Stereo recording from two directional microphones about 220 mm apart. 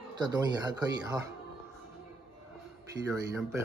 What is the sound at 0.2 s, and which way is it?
Speech, 20° right (ahead or behind).